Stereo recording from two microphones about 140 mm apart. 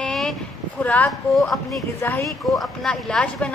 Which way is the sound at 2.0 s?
15° left (ahead or behind).